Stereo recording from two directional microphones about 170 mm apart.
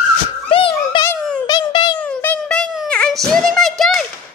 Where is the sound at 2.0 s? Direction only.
10° left (ahead or behind).